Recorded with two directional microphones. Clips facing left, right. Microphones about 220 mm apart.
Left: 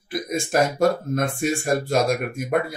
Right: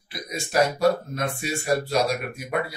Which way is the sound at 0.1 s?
50° left (ahead or behind).